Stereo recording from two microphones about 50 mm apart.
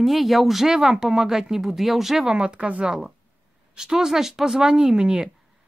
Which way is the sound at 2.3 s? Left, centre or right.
Centre.